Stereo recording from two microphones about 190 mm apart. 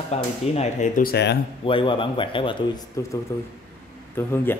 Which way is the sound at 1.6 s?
25° left (ahead or behind).